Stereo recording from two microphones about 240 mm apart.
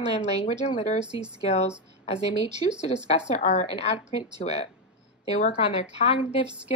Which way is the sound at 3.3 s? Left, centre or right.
Left.